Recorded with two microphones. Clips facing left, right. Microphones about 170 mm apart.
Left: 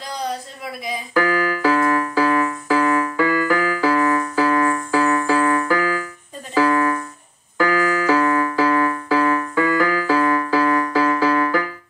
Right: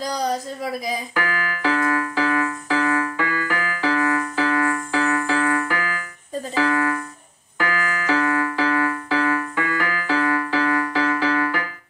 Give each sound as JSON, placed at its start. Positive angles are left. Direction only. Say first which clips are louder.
{"t": 0.0, "sound": "a sound", "louder": "right 3 dB", "side_deg": -40}
{"t": 1.1, "sound": "keyboard", "louder": "left 7 dB", "side_deg": 35}
{"t": 7.5, "sound": "music", "louder": "left 7 dB", "side_deg": 40}